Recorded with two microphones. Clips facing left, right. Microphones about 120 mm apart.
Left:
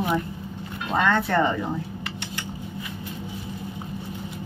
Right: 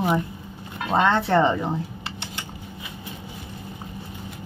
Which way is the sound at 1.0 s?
30° right (ahead or behind).